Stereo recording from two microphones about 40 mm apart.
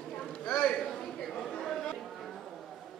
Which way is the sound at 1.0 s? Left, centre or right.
Centre.